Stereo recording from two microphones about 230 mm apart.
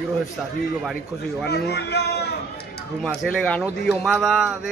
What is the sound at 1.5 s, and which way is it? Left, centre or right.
Speech, left.